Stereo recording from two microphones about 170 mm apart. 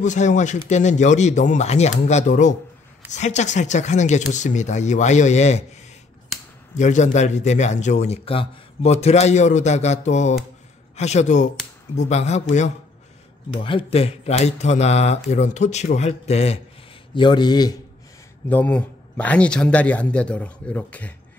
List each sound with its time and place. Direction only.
0.0 s a man's voice: 45° left (ahead or behind)
6.7 s a man's voice: 45° left (ahead or behind)
13.7 s speech: 35° left (ahead or behind)
17.1 s speech: 25° left (ahead or behind)
18.5 s speech: 10° left (ahead or behind)